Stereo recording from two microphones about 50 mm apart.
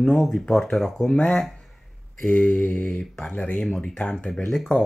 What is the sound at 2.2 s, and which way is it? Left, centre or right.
Mantra, left.